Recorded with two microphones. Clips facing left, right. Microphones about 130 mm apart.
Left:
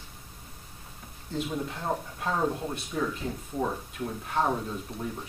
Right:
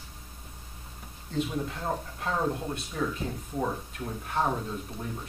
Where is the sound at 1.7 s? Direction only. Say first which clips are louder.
Left 1 dB; 5° left (ahead or behind).